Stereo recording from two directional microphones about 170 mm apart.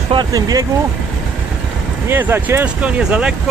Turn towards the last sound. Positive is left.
turn(degrees=-5)  # may be behind; listen again after turning